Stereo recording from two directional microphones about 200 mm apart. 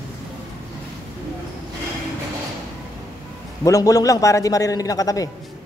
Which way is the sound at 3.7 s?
15° left (ahead or behind).